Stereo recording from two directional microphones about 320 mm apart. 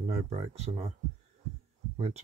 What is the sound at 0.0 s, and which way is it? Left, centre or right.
Speech, right.